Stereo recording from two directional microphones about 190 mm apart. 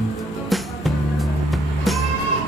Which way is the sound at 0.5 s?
Centre (ahead or behind).